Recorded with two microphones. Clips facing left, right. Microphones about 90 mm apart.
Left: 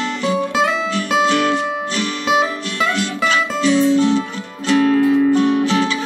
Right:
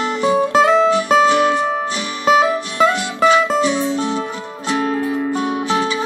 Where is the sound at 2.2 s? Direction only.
45° right (ahead or behind).